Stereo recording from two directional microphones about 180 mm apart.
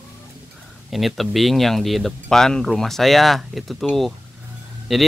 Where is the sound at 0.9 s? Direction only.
Centre (ahead or behind).